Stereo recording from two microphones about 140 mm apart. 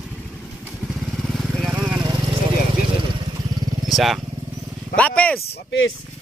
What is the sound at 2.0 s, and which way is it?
Vehicle, 30° right (ahead or behind).